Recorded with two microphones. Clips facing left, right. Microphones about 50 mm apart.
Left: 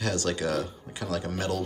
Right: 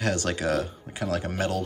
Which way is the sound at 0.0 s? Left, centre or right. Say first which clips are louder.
Right 2 dB; right.